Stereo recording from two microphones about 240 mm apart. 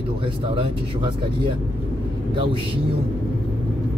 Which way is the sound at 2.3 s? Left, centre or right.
Right.